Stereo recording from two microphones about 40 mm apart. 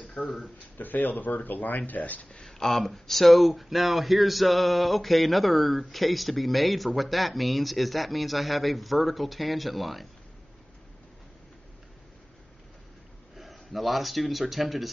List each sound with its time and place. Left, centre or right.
0.1 s speech: centre
0.7 s speech: left
2.3 s speech: centre
13.4 s a man's voice: centre